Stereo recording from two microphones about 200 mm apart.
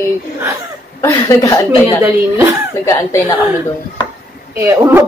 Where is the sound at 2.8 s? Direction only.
15° left (ahead or behind).